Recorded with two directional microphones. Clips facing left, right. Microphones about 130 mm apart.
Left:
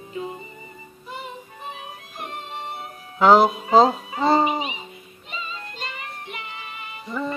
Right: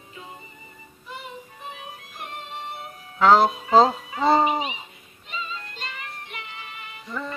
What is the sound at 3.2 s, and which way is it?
Speech, 10° left (ahead or behind).